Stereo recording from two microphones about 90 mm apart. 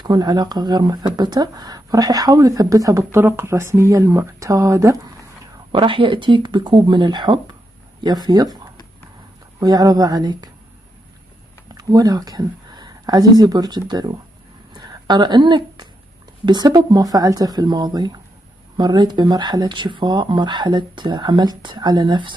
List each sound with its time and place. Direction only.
0.0 s speech: 50° right (ahead or behind); by 4.3 s 25° right (ahead or behind)
4.4 s speech: 35° right (ahead or behind)
5.7 s speech: 70° right (ahead or behind); by 8.5 s 45° right (ahead or behind)
9.6 s speech: 45° right (ahead or behind)
11.7 s a woman's voice: 45° right (ahead or behind)
19.6 s speech: 60° right (ahead or behind)